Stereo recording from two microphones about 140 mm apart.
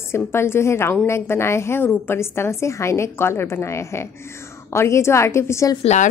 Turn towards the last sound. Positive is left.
turn(degrees=20)  # may be behind; listen again after turning